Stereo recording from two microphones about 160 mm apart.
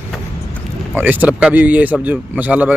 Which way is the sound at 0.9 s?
10° right (ahead or behind).